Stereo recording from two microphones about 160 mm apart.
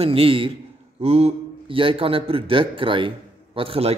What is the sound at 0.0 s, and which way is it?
A man's voice, 35° right (ahead or behind).